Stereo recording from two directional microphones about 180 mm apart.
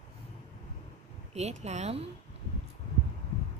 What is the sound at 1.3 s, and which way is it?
Speech, 40° right (ahead or behind).